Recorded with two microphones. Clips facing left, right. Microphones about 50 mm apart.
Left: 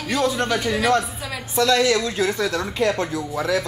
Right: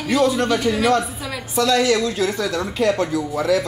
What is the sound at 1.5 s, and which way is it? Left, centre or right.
Speech, left.